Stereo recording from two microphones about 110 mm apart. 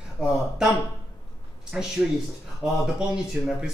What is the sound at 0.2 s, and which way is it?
Speech, 5° right (ahead or behind).